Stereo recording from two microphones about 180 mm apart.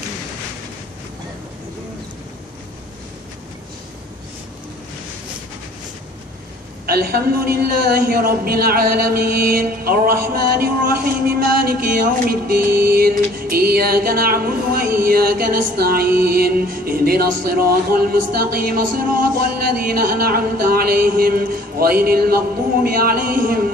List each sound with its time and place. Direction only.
6.9 s a man's voice: 60° right (ahead or behind)